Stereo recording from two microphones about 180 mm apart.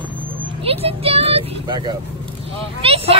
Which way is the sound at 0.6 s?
35° right (ahead or behind).